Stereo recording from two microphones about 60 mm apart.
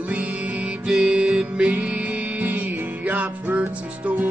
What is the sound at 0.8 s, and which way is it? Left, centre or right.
Music, centre.